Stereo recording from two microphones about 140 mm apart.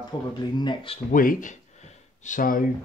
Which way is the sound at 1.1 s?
80° left.